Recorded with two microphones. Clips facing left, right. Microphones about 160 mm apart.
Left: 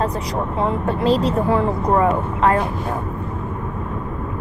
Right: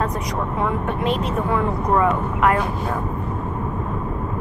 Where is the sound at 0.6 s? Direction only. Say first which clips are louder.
Left 3 dB; 30° left (ahead or behind).